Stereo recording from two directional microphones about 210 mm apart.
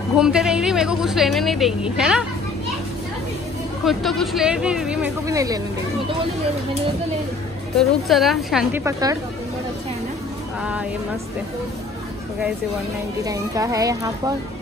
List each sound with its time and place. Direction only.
0.2 s a woman's voice: 5° right (ahead or behind)
3.8 s a woman's voice: centre (ahead or behind)
5.2 s speech: 15° right (ahead or behind)
7.7 s a woman's voice: centre (ahead or behind)
10.6 s a woman's voice: 5° right (ahead or behind)
13.2 s speech: 15° right (ahead or behind)